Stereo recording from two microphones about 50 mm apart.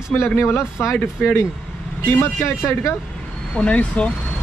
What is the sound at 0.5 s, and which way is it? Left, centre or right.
Speech, left.